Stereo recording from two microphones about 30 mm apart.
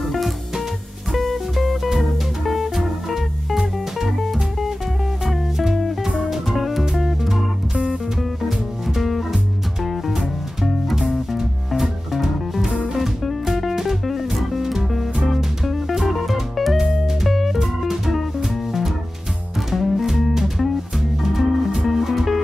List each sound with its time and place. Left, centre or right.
1.1 s music: centre
6.1 s music: centre
8.4 s music: centre
10.6 s music: centre
11.0 s music: centre
16.7 s music: centre